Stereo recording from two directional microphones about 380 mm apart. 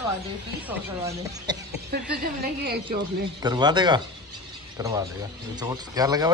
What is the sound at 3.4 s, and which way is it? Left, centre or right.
Speech, centre.